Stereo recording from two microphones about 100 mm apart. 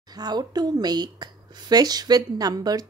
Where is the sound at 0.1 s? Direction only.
45° right (ahead or behind).